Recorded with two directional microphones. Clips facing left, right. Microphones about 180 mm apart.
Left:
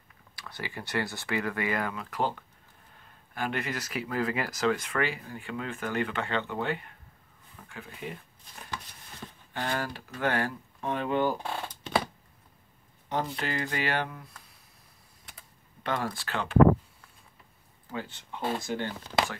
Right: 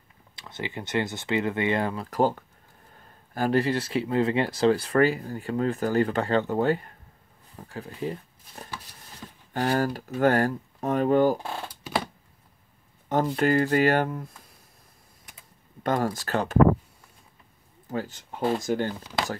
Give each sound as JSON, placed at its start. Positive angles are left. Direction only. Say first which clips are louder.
{"t": 0.4, "sound": "speech", "louder": "right 5 dB", "side_deg": -20}
{"t": 11.6, "sound": "a sound", "louder": "even", "side_deg": -10}
{"t": 13.1, "sound": "speech", "louder": "right 9 dB", "side_deg": -45}
{"t": 15.8, "sound": "speech", "louder": "right 6 dB", "side_deg": -45}
{"t": 17.8, "sound": "speech", "louder": "right 6 dB", "side_deg": -40}